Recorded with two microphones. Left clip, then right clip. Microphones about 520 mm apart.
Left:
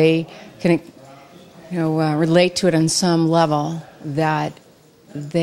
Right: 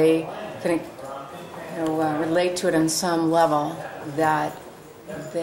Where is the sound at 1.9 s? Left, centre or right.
Left.